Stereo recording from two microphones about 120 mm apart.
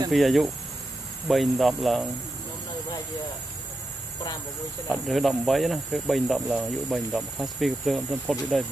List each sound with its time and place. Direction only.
0.1 s speech: centre (ahead or behind)
5.0 s speech: centre (ahead or behind)